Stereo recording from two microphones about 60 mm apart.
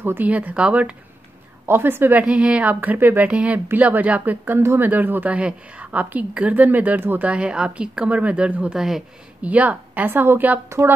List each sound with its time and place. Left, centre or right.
0.0 s speech: right
0.3 s a woman's voice: right
1.7 s speech: right
2.1 s a woman's voice: right
4.6 s a woman's voice: right
7.2 s a woman's voice: centre
8.7 s speech: centre
9.4 s a woman's voice: right
10.1 s speech: right